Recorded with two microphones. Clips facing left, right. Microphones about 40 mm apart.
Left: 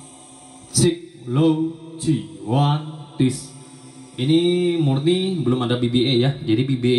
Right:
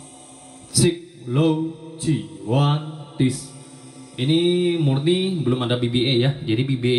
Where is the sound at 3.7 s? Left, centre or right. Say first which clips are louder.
Even; left.